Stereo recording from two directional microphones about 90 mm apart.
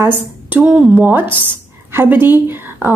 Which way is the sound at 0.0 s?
20° right (ahead or behind).